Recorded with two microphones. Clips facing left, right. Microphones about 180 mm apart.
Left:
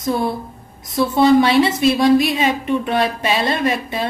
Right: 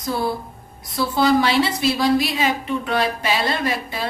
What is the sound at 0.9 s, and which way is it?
A woman's voice, 25° left (ahead or behind).